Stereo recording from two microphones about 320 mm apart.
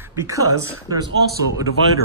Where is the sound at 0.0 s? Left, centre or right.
Centre.